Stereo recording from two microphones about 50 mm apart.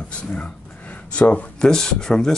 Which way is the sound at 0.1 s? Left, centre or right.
Left.